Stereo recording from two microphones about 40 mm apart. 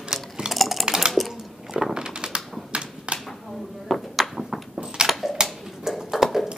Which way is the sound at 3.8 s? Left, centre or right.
Centre.